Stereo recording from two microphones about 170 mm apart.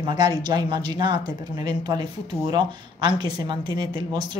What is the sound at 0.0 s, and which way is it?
Speech, 25° right (ahead or behind).